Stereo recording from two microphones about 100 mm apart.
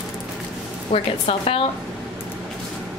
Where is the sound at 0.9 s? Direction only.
85° left.